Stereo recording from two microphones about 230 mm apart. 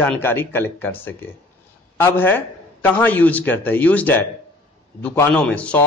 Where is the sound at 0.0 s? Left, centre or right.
Centre.